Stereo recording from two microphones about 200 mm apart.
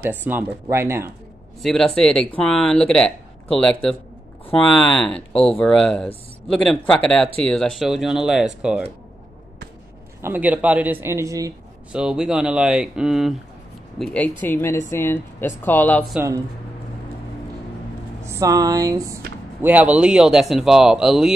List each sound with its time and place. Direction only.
0.0 s a man's voice: 10° right (ahead or behind)
1.6 s speech: centre (ahead or behind)
10.2 s a man's voice: 10° right (ahead or behind)
11.9 s speech: 5° right (ahead or behind)
18.2 s a man's voice: 15° right (ahead or behind)